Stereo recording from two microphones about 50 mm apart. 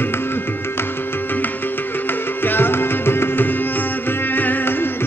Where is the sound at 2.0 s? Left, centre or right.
Left.